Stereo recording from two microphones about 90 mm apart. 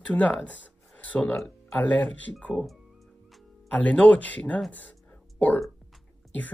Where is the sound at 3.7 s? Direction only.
15° left (ahead or behind).